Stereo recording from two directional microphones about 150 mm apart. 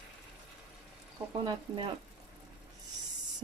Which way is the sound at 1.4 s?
35° right (ahead or behind).